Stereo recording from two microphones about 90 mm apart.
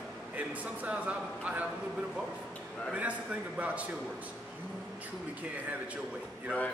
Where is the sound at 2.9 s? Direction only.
15° right (ahead or behind).